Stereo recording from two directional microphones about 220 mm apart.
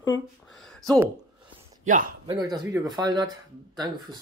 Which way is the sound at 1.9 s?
35° right (ahead or behind).